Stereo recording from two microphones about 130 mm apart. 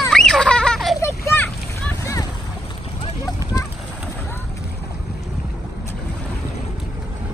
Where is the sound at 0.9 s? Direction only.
20° left (ahead or behind).